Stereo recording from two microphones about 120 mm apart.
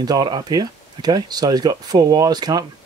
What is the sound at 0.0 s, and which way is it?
Speech, 35° right (ahead or behind).